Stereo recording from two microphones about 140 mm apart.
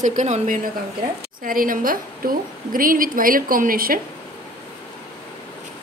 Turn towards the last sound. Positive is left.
turn(degrees=-90)